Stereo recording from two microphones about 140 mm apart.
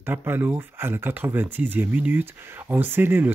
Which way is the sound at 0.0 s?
15° right (ahead or behind).